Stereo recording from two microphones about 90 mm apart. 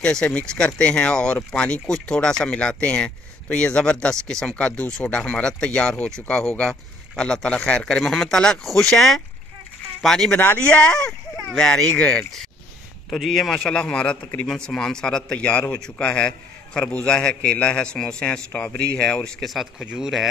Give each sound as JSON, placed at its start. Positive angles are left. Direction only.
{"t": 0.0, "sound": "speech", "side_deg": 10}
{"t": 13.1, "sound": "speech", "side_deg": 0}
{"t": 19.8, "sound": "speech", "side_deg": -10}